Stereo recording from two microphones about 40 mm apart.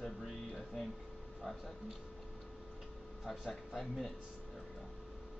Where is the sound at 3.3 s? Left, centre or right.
Centre.